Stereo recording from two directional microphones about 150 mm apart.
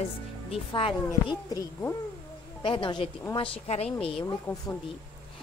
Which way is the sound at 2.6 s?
35° left (ahead or behind).